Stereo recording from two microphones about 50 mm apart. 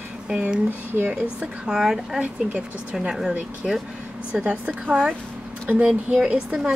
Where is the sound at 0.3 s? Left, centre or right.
Centre.